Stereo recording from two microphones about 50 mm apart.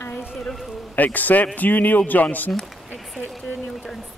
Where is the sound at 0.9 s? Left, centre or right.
Left.